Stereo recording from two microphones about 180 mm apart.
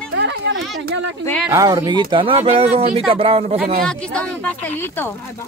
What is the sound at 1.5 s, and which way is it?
A man's voice, 15° right (ahead or behind).